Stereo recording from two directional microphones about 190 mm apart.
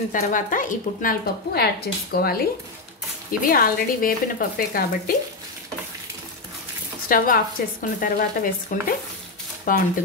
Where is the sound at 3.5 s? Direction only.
50° left (ahead or behind).